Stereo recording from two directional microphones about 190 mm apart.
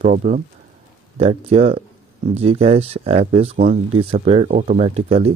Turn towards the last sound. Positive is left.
turn(degrees=-30)  # may be behind; listen again after turning